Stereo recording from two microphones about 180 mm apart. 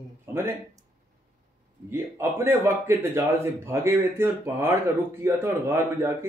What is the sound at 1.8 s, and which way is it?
Speech, 15° right (ahead or behind).